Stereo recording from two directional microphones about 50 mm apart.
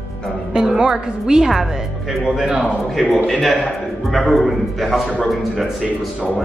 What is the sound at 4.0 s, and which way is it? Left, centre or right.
A man's voice, centre.